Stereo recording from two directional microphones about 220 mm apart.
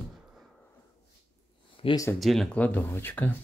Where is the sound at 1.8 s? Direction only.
20° left (ahead or behind).